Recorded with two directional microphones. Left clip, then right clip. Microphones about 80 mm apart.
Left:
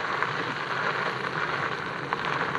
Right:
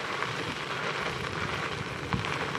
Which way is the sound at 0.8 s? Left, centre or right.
Right.